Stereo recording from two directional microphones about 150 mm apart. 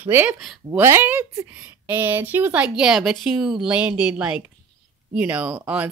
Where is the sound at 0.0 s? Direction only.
15° right (ahead or behind).